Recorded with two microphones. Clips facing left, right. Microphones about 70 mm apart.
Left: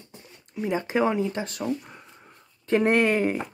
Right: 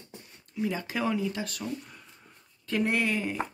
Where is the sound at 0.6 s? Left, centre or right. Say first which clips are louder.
Left 6 dB; left.